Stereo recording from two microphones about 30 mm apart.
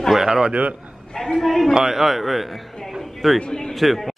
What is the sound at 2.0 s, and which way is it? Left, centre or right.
Speech, centre.